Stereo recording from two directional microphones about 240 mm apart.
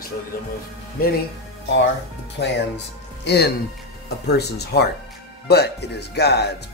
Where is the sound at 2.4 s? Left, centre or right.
Left.